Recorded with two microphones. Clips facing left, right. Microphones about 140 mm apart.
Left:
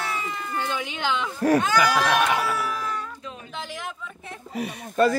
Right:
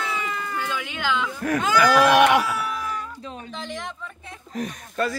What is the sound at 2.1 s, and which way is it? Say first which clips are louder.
Speech: right 6 dB; 85° right.